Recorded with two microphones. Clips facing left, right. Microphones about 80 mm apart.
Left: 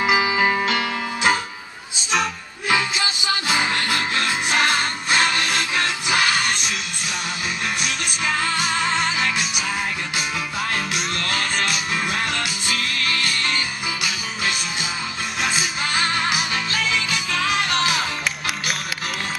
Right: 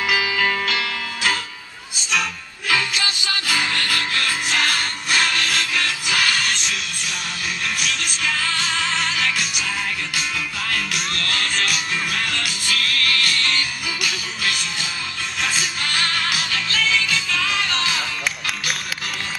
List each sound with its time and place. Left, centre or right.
0.0 s music: left
2.7 s music: centre
7.8 s music: left
10.7 s music: left